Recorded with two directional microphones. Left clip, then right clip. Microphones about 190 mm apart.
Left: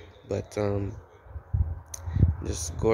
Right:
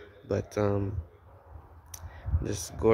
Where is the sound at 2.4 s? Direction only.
10° right (ahead or behind).